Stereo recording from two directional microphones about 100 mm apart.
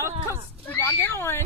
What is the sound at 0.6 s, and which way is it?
Speech, 20° left (ahead or behind).